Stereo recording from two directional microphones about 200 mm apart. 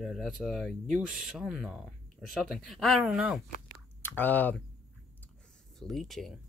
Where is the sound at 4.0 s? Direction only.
10° left (ahead or behind).